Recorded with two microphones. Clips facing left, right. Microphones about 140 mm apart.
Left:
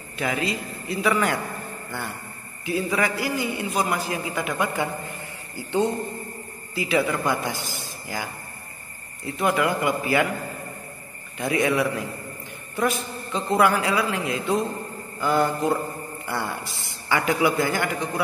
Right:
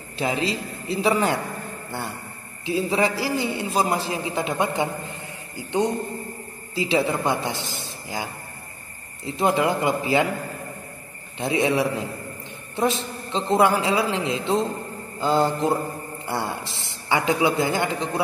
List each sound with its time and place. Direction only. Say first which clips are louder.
0.2 s a man's voice: right 2 dB; 30° right (ahead or behind)
2.6 s a man's voice: right 2 dB; 25° right (ahead or behind)
5.6 s a man's voice: even; 15° right (ahead or behind)
6.7 s a man's voice: right 1 dB; 25° right (ahead or behind)
9.2 s a man's voice: right 2 dB; 25° right (ahead or behind)
11.3 s a man's voice: right 1 dB; 25° right (ahead or behind)